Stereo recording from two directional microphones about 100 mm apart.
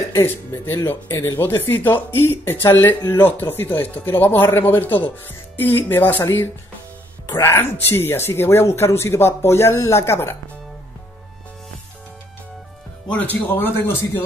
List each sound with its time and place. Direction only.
0.1 s speech: 30° left (ahead or behind)
13.1 s speech: 15° left (ahead or behind)